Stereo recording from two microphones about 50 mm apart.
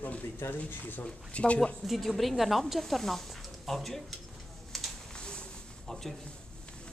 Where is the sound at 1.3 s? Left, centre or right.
Left.